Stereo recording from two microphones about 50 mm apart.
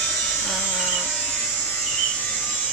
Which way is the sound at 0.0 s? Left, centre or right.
Centre.